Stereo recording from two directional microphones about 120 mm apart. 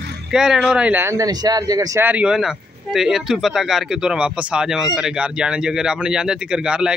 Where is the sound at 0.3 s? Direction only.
5° right (ahead or behind); by 2.0 s 30° right (ahead or behind).